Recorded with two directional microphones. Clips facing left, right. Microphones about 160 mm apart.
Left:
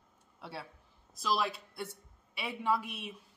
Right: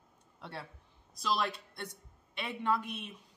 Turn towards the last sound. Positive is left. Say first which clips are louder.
# even
turn(degrees=5)  # may be behind; listen again after turning